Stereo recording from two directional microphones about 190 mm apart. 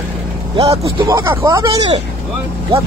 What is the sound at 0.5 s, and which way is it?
Speech, 25° right (ahead or behind).